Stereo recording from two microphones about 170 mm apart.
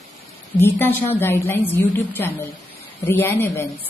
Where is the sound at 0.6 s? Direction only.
15° left (ahead or behind).